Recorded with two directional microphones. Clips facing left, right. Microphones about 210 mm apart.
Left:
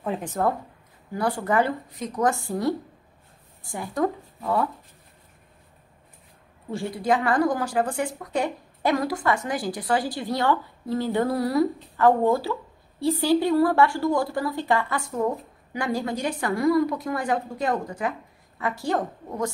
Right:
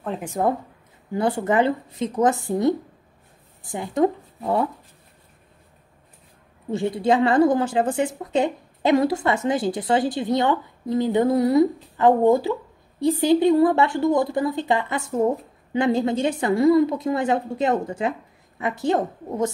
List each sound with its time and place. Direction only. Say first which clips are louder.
0.2 s a woman's voice: right 2 dB; 15° right (ahead or behind)
6.7 s a woman's voice: right 4 dB; 20° right (ahead or behind)